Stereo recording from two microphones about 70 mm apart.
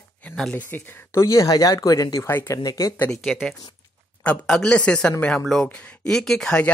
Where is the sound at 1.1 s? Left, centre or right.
Left.